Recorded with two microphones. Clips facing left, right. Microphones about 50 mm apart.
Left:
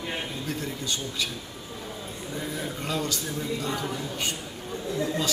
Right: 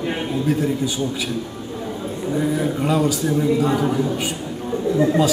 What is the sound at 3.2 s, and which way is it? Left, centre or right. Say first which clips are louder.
Speech: right 12 dB; right.